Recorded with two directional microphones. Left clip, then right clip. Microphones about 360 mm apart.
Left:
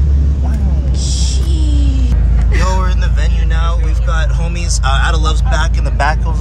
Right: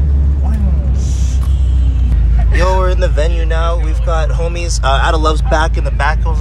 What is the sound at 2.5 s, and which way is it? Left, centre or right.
Vehicle, centre.